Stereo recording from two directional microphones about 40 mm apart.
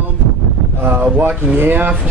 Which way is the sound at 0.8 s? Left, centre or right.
Right.